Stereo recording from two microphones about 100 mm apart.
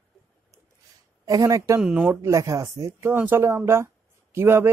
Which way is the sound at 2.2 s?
30° right (ahead or behind).